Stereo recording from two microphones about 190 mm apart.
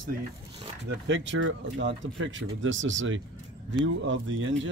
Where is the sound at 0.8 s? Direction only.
70° right (ahead or behind).